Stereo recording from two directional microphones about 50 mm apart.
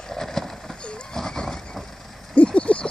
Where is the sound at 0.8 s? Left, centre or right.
Centre.